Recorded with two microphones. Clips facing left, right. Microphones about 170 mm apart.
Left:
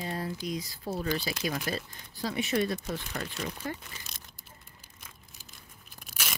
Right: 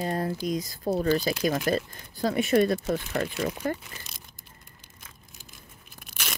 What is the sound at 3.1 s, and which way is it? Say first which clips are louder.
Speech: right 8 dB; 65° right (ahead or behind).